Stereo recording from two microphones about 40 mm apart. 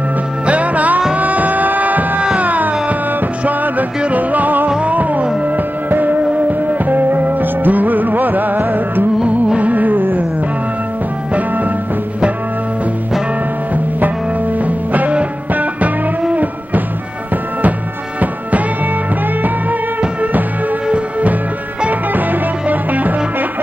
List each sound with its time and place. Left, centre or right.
0.5 s music: right
14.7 s music: right
20.9 s music: right